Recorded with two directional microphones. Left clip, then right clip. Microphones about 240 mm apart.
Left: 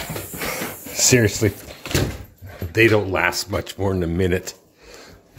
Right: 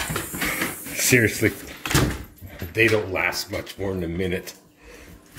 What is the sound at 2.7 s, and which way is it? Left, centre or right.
Speech, left.